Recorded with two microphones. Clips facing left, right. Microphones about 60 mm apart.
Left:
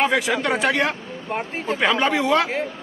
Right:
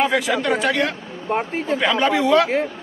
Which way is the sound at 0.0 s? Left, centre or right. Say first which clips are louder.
Right 1 dB; centre.